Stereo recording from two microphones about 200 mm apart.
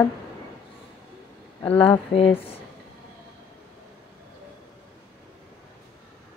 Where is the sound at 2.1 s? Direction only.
30° left (ahead or behind).